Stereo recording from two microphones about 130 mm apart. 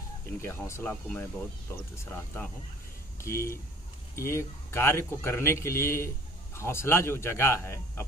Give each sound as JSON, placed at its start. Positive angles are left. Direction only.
{"t": 0.4, "sound": "a man's voice", "side_deg": 20}